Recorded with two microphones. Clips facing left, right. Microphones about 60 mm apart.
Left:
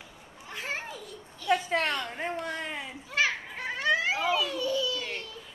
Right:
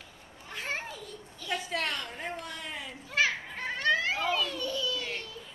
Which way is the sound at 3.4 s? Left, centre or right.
Centre.